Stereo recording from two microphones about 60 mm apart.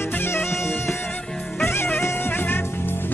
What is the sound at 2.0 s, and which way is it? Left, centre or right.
Music, left.